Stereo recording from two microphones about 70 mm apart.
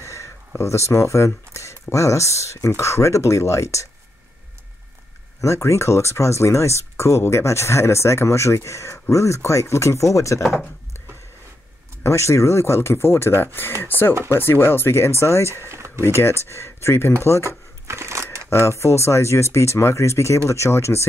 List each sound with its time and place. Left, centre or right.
0.0 s a sound: left
0.6 s speech: left
5.4 s speech: left
12.0 s speech: left
17.4 s shuffling cards: right
18.5 s speech: left